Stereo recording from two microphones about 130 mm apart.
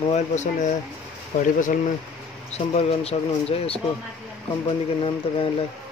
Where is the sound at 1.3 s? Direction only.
85° left.